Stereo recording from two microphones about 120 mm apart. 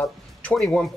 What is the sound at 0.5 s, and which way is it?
Speech, 5° left (ahead or behind).